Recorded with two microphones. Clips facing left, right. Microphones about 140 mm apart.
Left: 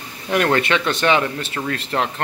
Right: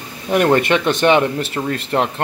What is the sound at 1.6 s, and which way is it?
Speech, 15° right (ahead or behind).